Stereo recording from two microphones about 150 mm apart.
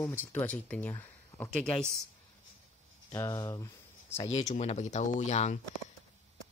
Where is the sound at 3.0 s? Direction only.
20° left (ahead or behind).